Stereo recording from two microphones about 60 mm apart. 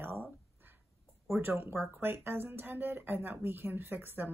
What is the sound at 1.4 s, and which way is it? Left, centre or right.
Speech, right.